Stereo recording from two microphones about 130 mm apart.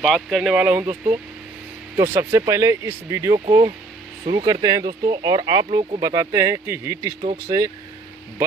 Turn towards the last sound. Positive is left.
turn(degrees=-30)  # may be behind; listen again after turning